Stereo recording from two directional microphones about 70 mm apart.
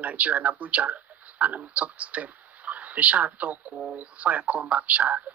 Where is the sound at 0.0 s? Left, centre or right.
Centre.